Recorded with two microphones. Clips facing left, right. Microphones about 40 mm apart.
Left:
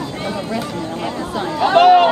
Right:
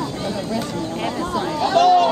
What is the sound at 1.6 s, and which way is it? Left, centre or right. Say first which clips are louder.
Speech: left 4 dB; left.